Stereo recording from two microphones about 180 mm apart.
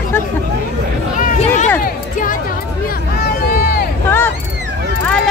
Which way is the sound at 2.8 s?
55° left (ahead or behind).